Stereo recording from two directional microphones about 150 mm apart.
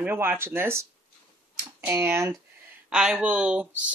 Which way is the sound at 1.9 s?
15° right (ahead or behind).